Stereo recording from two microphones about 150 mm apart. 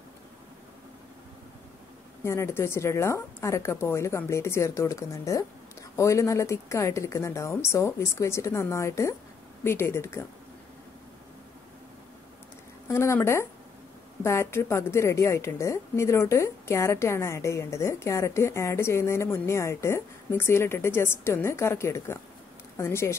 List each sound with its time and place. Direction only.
2.2 s a woman's voice: 15° left (ahead or behind)
12.8 s a woman's voice: 20° left (ahead or behind)